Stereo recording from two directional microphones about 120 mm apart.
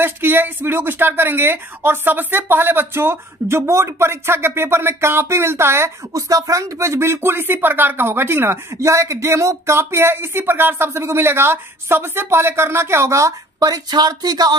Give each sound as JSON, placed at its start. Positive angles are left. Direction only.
{"t": 0.0, "sound": "speech", "side_deg": -20}